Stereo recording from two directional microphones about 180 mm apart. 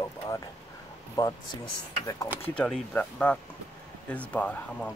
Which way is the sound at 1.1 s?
25° left (ahead or behind).